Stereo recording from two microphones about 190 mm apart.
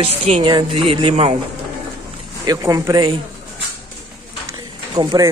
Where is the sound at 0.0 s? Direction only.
30° right (ahead or behind).